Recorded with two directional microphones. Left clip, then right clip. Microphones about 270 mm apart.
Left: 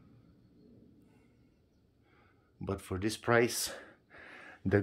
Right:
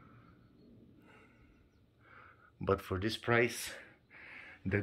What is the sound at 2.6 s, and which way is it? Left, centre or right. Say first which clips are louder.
Speech: right 3 dB; centre.